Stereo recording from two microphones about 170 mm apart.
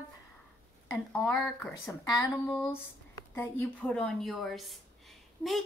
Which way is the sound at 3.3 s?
15° left (ahead or behind).